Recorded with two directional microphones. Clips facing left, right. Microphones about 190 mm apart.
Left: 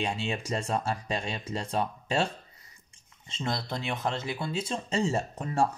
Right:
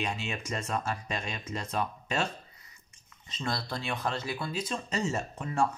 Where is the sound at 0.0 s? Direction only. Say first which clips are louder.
Left 3 dB; 30° left (ahead or behind).